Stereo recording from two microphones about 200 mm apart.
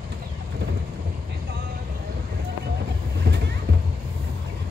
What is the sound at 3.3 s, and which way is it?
Music, 55° right (ahead or behind).